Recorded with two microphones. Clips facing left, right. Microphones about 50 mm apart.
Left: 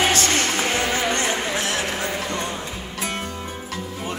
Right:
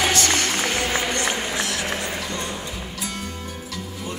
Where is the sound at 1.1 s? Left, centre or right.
Left.